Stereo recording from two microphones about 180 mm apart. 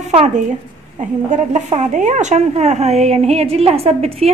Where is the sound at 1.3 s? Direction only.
40° right (ahead or behind).